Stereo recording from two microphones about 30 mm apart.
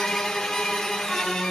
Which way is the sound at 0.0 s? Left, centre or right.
Centre.